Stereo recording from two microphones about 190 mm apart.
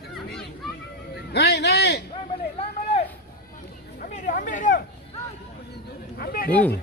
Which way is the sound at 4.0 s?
40° left (ahead or behind).